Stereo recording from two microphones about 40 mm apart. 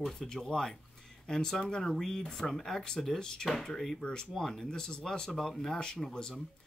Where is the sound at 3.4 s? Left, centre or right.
Centre.